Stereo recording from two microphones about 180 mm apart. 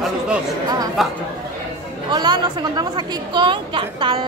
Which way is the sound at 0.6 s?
20° right (ahead or behind).